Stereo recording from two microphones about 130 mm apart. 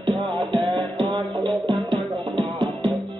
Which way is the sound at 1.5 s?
Centre (ahead or behind).